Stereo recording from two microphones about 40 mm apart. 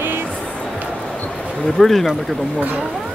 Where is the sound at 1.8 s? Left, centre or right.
Centre.